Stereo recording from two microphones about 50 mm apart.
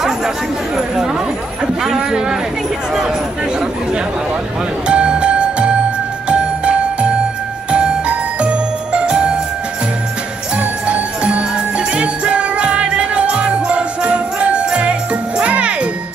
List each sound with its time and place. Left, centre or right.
1.9 s a sound: centre
4.8 s music: centre
6.2 s jingle bell: right
10.9 s jingle bell: right
12.0 s music: right